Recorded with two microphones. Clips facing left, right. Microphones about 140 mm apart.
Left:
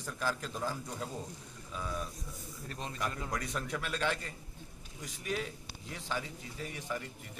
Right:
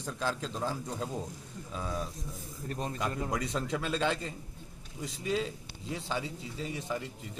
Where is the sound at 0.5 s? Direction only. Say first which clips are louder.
Right 3 dB; 25° right (ahead or behind).